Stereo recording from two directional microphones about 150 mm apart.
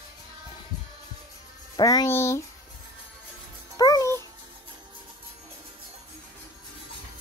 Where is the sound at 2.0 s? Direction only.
15° left (ahead or behind).